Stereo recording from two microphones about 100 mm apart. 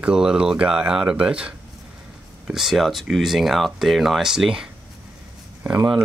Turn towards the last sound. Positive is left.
turn(degrees=-20)  # may be behind; listen again after turning